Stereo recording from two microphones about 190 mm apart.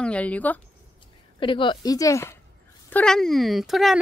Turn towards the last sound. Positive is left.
turn(degrees=0)  # may be behind; listen again after turning